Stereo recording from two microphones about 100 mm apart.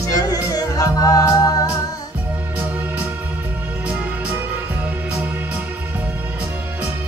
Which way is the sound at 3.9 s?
20° right (ahead or behind).